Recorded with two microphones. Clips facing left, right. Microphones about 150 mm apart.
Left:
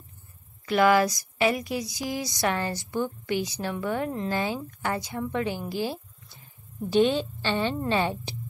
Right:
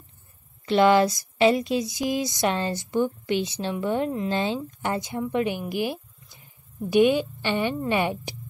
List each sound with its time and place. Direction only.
0.7 s a woman's voice: 25° right (ahead or behind)